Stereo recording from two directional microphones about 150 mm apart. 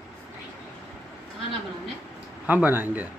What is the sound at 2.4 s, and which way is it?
Speech, 10° right (ahead or behind).